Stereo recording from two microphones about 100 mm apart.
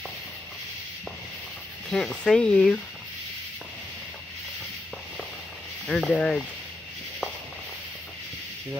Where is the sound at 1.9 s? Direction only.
10° left (ahead or behind).